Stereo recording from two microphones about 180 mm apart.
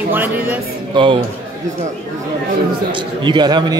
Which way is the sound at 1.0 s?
25° right (ahead or behind).